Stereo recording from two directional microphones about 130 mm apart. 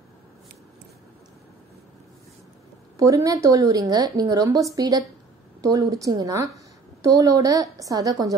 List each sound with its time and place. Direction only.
3.0 s a woman's voice: 25° right (ahead or behind)